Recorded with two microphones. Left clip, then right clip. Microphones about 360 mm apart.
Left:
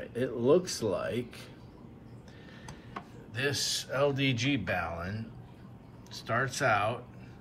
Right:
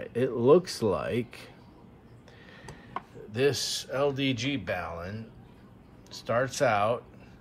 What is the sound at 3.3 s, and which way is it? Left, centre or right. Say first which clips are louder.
Speech: right 4 dB; centre.